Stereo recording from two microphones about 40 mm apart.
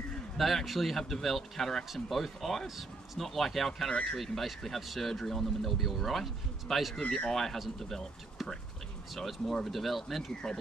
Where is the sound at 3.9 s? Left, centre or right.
Left.